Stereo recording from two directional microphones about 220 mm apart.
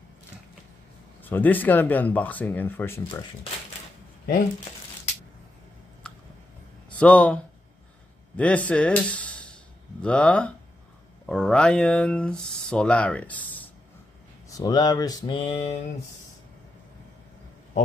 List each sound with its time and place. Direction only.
1.2 s speech: 10° left (ahead or behind)
6.9 s speech: 5° left (ahead or behind)
8.4 s speech: 5° left (ahead or behind)
14.5 s speech: 15° left (ahead or behind)